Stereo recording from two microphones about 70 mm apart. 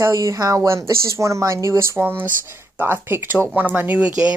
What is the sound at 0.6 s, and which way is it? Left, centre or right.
Speech, right.